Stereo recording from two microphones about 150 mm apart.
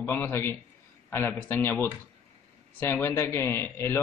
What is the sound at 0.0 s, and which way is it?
A man's voice, 15° left (ahead or behind).